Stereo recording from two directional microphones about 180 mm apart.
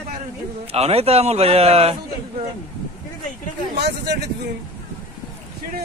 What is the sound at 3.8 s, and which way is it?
Speech, 70° right (ahead or behind).